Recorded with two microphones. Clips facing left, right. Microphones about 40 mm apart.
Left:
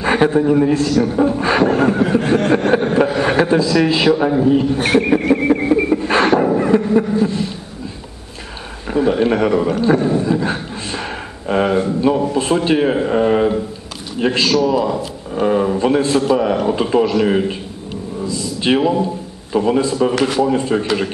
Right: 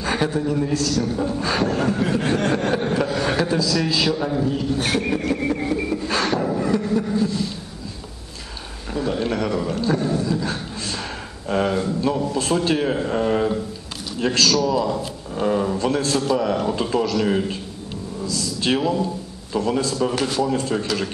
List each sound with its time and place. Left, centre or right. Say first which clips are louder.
0.0 s speech: left 8 dB; left
2.5 s chuckle: left 7 dB; left
8.9 s speech: left 8 dB; left
18.2 s a sound: left 4 dB; left
19.5 s speech: left 6 dB; left